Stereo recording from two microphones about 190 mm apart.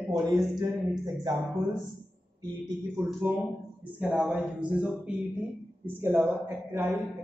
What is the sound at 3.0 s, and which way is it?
Speech, 15° right (ahead or behind).